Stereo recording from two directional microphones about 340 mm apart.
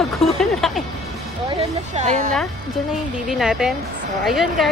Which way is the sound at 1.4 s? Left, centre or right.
Centre.